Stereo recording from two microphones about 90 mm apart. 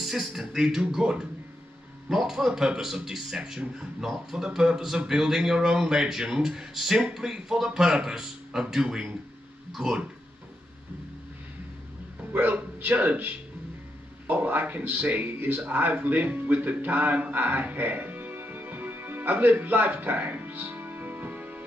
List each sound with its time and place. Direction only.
0.0 s a man's voice: 5° right (ahead or behind)
12.3 s a man's voice: 20° right (ahead or behind)